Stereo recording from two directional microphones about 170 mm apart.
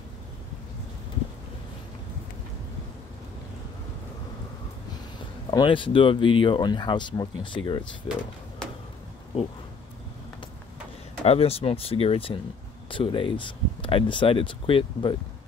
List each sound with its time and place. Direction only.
5.5 s speech: 30° left (ahead or behind)
11.2 s speech: 35° left (ahead or behind)